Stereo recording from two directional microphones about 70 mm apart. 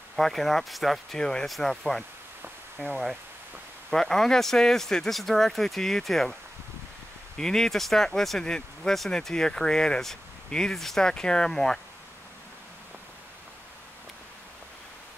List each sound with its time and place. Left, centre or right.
0.1 s speech: centre
2.4 s rain on surface: right
3.9 s speech: centre
7.3 s speech: centre